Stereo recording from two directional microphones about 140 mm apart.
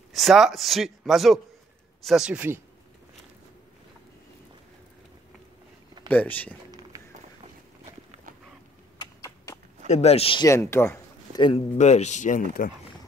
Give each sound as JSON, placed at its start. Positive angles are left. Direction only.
{"t": 0.1, "sound": "a man's voice", "side_deg": 0}
{"t": 6.0, "sound": "speech", "side_deg": 10}
{"t": 6.7, "sound": "run", "side_deg": -30}
{"t": 8.9, "sound": "a sound", "side_deg": 25}
{"t": 9.8, "sound": "speech", "side_deg": 50}
{"t": 10.4, "sound": "speech", "side_deg": 20}
{"t": 11.3, "sound": "speech", "side_deg": 40}
{"t": 11.8, "sound": "speech", "side_deg": 55}